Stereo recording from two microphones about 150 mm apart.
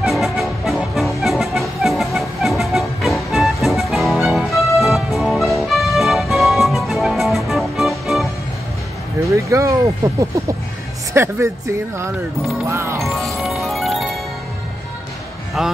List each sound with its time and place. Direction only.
0.0 s music: centre (ahead or behind)
9.3 s a sound: 20° right (ahead or behind)
11.1 s speech: 20° right (ahead or behind)
12.6 s speech: 20° right (ahead or behind)
13.0 s music: centre (ahead or behind)
15.6 s speech: centre (ahead or behind)